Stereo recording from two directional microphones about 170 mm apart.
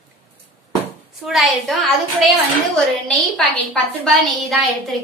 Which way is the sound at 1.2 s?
Centre (ahead or behind).